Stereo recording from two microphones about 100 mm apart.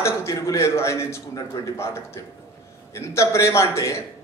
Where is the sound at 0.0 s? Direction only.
30° left (ahead or behind).